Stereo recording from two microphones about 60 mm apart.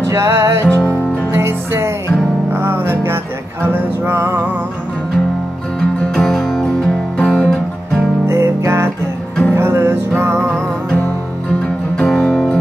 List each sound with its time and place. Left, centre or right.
0.1 s music: right
0.7 s music: left
1.3 s music: right
5.8 s music: centre
8.3 s music: right
9.5 s music: right
12.1 s music: centre